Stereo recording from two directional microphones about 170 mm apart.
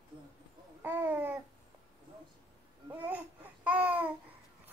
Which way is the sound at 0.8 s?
10° right (ahead or behind).